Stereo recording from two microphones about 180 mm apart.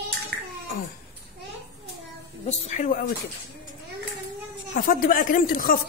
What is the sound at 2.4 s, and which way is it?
Speech, 40° left (ahead or behind).